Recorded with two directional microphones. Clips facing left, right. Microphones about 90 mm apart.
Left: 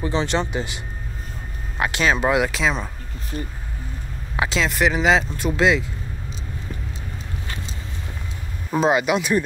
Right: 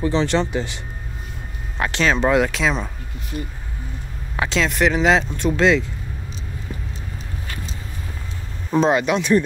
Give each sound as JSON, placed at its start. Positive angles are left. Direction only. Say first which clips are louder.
{"t": 0.0, "sound": "speech", "louder": "right 3 dB", "side_deg": 20}
{"t": 4.4, "sound": "speech", "louder": "right 1 dB", "side_deg": 5}
{"t": 6.7, "sound": "a sound", "louder": "right 2 dB", "side_deg": -10}
{"t": 8.6, "sound": "speech", "louder": "right 1 dB", "side_deg": 5}